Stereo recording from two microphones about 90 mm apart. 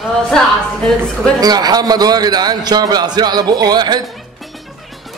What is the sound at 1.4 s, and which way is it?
A man's voice, 50° right (ahead or behind).